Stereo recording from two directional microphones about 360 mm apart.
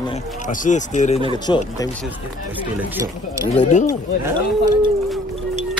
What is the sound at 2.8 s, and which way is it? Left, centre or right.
Speech, centre.